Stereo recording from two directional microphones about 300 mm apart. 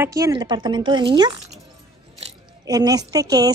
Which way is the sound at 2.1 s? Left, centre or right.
Centre.